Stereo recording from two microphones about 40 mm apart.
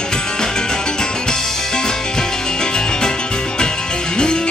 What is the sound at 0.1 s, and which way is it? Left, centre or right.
Music, centre.